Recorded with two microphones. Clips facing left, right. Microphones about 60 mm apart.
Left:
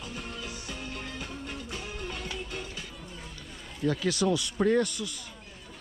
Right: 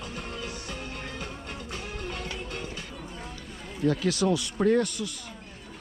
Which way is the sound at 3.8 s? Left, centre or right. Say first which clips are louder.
Right 2 dB; right.